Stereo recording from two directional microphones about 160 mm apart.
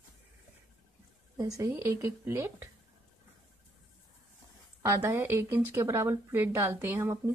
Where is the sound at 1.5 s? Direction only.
20° right (ahead or behind).